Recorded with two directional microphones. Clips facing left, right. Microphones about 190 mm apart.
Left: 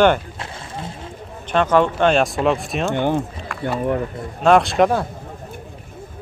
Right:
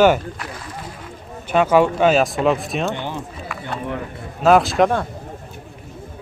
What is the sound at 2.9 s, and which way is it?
Speech, 50° left (ahead or behind).